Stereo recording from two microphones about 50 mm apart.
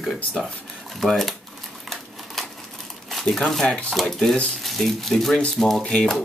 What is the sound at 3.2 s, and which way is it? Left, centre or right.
Speech, centre.